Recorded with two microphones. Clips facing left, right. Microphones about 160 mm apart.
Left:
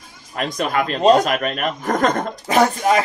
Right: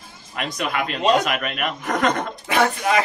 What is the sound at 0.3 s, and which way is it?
Speech, 45° left (ahead or behind).